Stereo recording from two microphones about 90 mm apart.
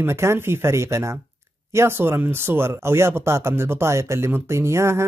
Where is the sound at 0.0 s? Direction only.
30° right (ahead or behind).